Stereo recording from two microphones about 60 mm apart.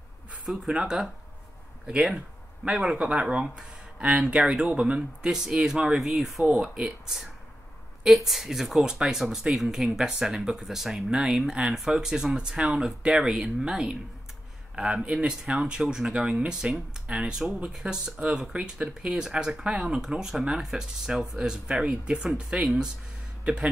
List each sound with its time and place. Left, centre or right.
0.7 s speech: centre